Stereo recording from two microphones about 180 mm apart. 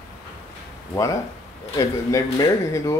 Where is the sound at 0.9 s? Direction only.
20° left (ahead or behind).